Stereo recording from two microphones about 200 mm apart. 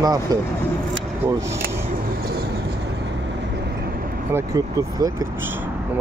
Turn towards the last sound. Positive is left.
turn(degrees=-15)  # may be behind; listen again after turning